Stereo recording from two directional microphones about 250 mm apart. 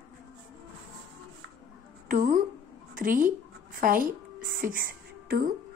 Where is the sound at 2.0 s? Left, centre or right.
Right.